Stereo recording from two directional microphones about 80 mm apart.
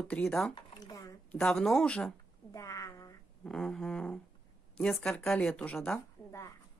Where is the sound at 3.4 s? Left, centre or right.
Centre.